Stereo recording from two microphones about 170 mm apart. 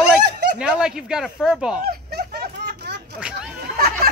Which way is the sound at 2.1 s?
70° right (ahead or behind).